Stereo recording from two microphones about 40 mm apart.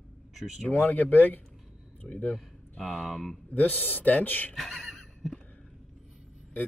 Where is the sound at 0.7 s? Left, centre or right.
Left.